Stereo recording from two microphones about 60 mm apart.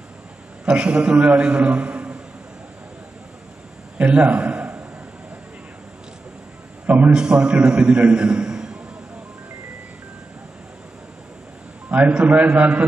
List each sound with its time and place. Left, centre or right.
0.7 s a man's voice: centre
4.0 s a man's voice: right
6.9 s a man's voice: right
11.9 s a man's voice: right